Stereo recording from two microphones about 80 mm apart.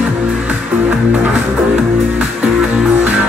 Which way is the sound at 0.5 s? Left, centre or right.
Centre.